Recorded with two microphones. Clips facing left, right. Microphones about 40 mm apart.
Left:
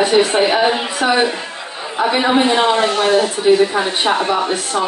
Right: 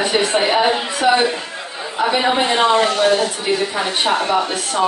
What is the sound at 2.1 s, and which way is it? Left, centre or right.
Speech, centre.